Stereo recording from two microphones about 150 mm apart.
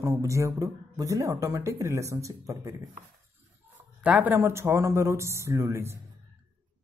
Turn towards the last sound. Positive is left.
turn(degrees=-20)  # may be behind; listen again after turning